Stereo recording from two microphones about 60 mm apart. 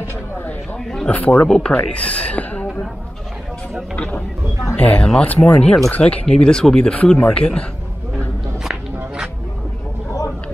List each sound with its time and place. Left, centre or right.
1.0 s speech: left
1.5 s speech: centre
3.9 s speech: centre
8.6 s a sound: centre